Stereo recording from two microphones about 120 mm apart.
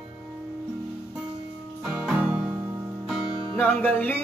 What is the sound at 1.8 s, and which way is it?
Music, 5° right (ahead or behind).